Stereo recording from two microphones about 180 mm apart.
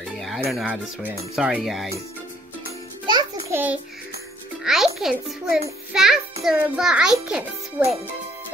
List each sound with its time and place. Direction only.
0.0 s music: centre (ahead or behind)
0.5 s speech: 5° right (ahead or behind)
3.1 s music: 25° right (ahead or behind)
3.5 s a child's voice: 10° right (ahead or behind)